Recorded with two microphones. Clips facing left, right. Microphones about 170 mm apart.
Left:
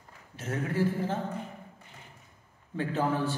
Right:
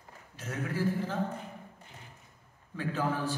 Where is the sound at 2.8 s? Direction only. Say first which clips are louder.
Left 3 dB; 25° left (ahead or behind).